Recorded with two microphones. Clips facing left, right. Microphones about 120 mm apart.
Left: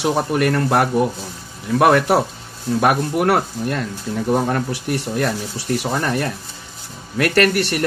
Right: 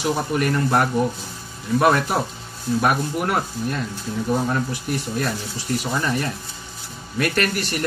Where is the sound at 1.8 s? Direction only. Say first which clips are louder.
Left 4 dB; 85° left.